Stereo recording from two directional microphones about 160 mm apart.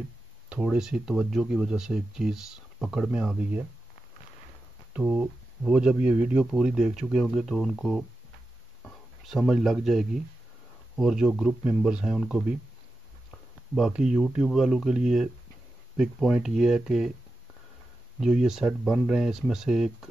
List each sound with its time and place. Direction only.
0.5 s speech: 5° right (ahead or behind)
4.9 s speech: 10° right (ahead or behind)
18.2 s speech: 5° right (ahead or behind)